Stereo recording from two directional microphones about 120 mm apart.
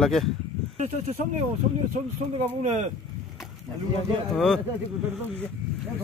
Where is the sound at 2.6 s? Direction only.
80° right.